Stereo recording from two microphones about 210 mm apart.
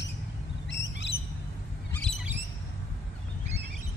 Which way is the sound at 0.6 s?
55° left (ahead or behind).